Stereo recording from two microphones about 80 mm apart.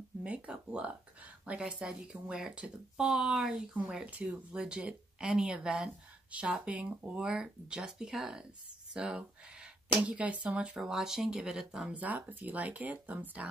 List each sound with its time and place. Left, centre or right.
0.2 s speech: centre
11.9 s speech: centre